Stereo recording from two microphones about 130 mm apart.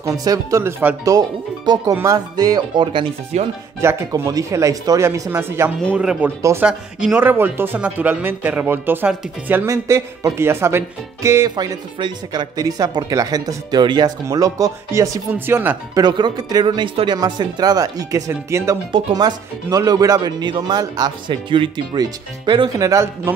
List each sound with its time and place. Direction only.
0.0 s speech: 25° right (ahead or behind)
3.3 s chopping: 60° right (ahead or behind)
3.8 s speech: 25° right (ahead or behind)
5.9 s speech: 10° right (ahead or behind); by 15.0 s 25° right (ahead or behind)
15.3 s speech: 15° right (ahead or behind)
15.9 s speech: 35° right (ahead or behind)
18.9 s speech: 40° right (ahead or behind); by 23.3 s 25° right (ahead or behind)